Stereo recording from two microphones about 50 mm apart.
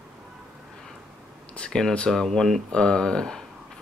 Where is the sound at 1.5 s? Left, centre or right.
Left.